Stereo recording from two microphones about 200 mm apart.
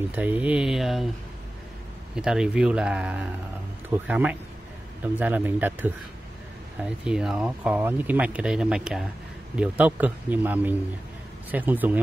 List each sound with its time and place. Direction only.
0.1 s speech: 10° right (ahead or behind)
2.1 s speech: 5° right (ahead or behind)